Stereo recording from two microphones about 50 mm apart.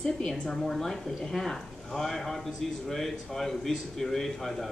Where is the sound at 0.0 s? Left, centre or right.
Centre.